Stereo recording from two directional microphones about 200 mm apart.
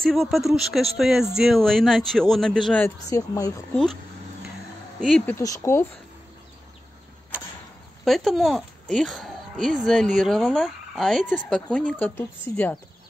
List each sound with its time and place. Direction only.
0.1 s speech: centre (ahead or behind)
3.1 s speech: 15° left (ahead or behind)
5.0 s speech: centre (ahead or behind)
5.3 s speech: 15° left (ahead or behind)
8.0 s a child's voice: centre (ahead or behind)